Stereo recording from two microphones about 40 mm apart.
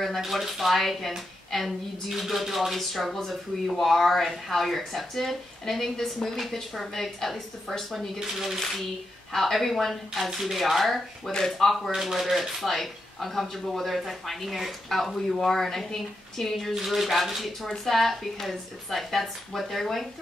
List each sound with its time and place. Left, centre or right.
0.0 s speech: centre
16.7 s speech: centre